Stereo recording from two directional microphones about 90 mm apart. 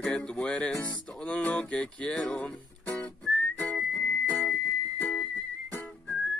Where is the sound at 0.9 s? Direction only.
15° left (ahead or behind).